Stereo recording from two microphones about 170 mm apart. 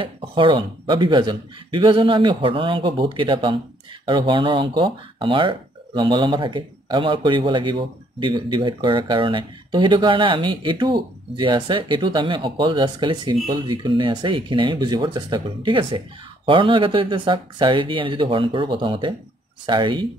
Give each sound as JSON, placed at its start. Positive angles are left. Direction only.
{"t": 0.0, "sound": "speech", "side_deg": -30}